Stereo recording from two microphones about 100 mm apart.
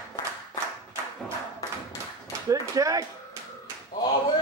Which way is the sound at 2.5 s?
35° right (ahead or behind).